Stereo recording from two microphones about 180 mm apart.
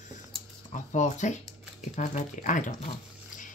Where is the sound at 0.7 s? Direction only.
40° left (ahead or behind).